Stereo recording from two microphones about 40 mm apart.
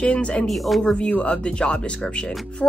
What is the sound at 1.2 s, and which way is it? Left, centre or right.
Speech, left.